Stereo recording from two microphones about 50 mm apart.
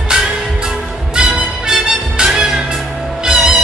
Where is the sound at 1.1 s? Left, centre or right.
Centre.